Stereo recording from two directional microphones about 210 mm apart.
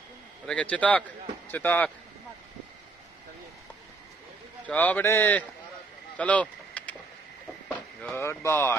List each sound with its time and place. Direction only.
0.5 s a man's voice: 5° left (ahead or behind)
4.6 s a man's voice: 10° left (ahead or behind)
6.1 s vehicle: 5° left (ahead or behind)
7.6 s speech: 5° left (ahead or behind)